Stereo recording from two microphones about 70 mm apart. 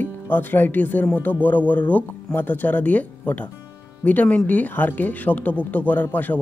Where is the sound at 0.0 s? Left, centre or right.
Left.